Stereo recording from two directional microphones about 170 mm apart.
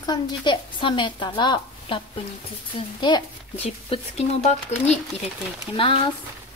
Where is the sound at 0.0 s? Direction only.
25° left (ahead or behind).